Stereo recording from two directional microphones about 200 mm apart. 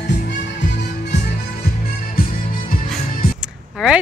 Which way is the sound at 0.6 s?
60° left (ahead or behind).